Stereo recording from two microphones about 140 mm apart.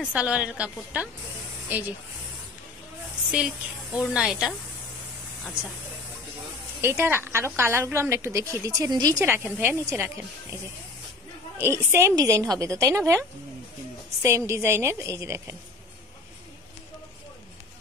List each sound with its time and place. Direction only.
0.1 s speech: 5° right (ahead or behind)
3.3 s a woman's voice: 5° right (ahead or behind)
6.8 s a woman's voice: 20° right (ahead or behind)
9.2 s a woman's voice: 15° right (ahead or behind)
14.2 s a woman's voice: 20° right (ahead or behind)